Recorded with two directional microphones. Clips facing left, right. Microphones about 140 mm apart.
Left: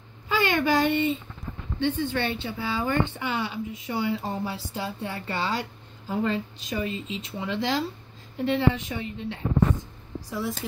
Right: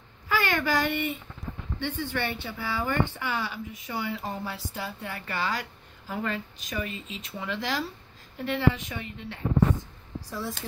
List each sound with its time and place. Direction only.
0.3 s a child's voice: 20° left (ahead or behind)